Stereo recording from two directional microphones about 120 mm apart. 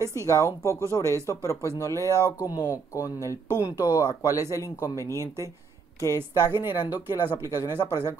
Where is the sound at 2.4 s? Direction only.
30° left (ahead or behind).